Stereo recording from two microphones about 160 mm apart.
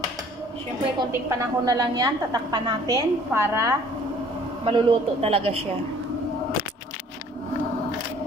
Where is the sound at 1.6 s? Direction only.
25° right (ahead or behind).